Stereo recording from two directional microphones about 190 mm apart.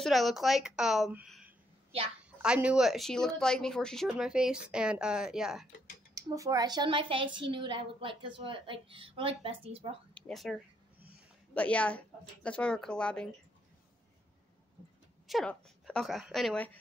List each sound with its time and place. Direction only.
0.0 s speech: centre (ahead or behind)
6.1 s a woman's voice: 20° right (ahead or behind)
10.1 s a sound: centre (ahead or behind)
11.5 s a woman's voice: 5° left (ahead or behind)
15.2 s speech: centre (ahead or behind)